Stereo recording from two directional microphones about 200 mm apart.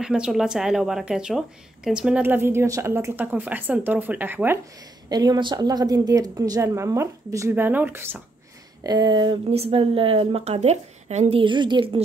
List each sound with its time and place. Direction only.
0.0 s a woman's voice: 5° right (ahead or behind)
5.1 s a woman's voice: 20° right (ahead or behind)
8.8 s speech: 20° right (ahead or behind)